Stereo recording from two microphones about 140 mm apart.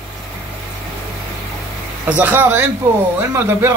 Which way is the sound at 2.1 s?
15° right (ahead or behind).